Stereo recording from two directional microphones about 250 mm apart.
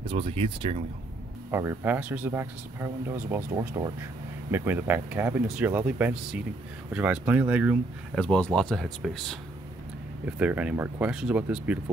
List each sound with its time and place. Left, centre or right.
0.1 s speech: right
1.5 s speech: centre